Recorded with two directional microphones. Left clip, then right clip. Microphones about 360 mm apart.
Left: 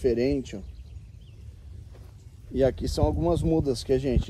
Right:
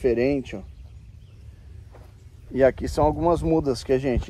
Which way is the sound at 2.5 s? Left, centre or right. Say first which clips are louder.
Right 5 dB; centre.